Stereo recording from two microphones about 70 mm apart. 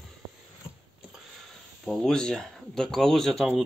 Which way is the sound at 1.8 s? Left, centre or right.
Centre.